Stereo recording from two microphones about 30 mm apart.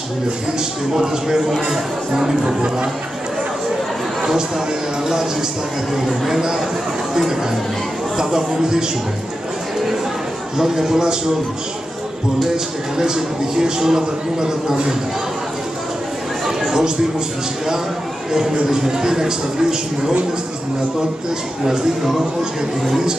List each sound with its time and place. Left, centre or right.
0.9 s a man's voice: centre
5.9 s speech: centre
8.2 s a man's voice: right
10.6 s a man's voice: centre
12.9 s a man's voice: right
18.3 s a man's voice: centre